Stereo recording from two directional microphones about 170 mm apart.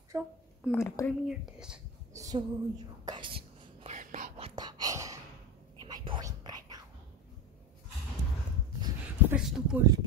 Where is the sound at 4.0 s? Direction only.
50° right (ahead or behind).